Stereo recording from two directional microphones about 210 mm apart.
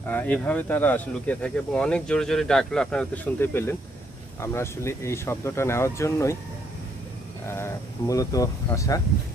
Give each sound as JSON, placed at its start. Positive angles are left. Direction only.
{"t": 0.1, "sound": "speech", "side_deg": 5}
{"t": 7.4, "sound": "speech", "side_deg": 10}